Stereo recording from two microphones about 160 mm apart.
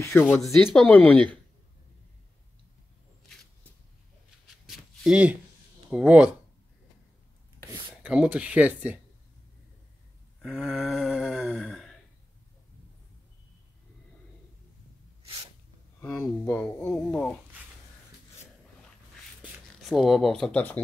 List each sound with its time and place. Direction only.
0.0 s speech: 10° left (ahead or behind)
4.6 s a sound: 5° right (ahead or behind)
5.9 s speech: 10° right (ahead or behind)
8.0 s speech: 5° right (ahead or behind)
10.4 s snoring: centre (ahead or behind)
16.0 s speech: 5° left (ahead or behind)
16.4 s speech: 15° left (ahead or behind)
19.8 s speech: centre (ahead or behind)